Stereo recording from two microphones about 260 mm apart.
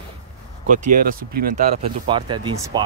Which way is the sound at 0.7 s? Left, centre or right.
Right.